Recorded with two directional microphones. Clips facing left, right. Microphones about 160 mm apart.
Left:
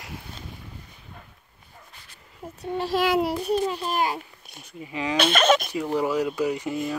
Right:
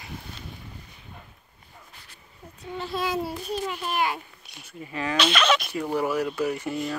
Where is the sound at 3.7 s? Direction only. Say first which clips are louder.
Left 2 dB; 35° left (ahead or behind).